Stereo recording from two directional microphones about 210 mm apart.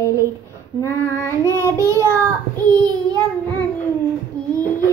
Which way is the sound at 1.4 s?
15° right (ahead or behind).